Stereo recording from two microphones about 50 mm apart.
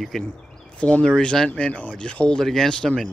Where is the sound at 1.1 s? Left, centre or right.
Centre.